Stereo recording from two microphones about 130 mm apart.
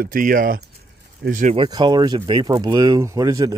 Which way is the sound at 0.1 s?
90° right.